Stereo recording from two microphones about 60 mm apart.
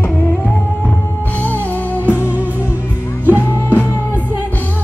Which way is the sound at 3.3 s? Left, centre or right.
Right.